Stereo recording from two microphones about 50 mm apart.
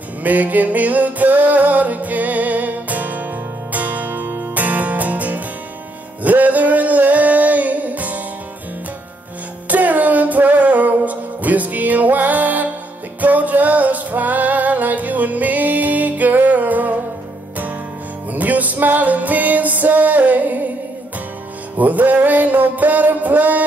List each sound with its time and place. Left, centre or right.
0.2 s music: right
9.7 s music: right
18.3 s music: right
21.7 s music: right